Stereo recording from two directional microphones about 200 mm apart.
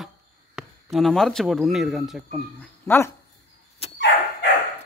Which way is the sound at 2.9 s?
10° left (ahead or behind).